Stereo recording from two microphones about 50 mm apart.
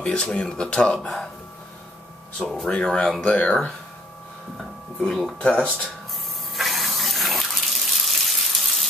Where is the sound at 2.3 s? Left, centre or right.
Centre; by 3.5 s left.